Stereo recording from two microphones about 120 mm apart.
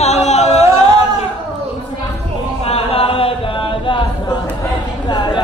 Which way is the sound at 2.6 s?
55° left (ahead or behind).